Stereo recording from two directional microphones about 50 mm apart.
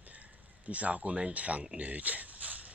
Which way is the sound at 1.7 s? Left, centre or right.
Right.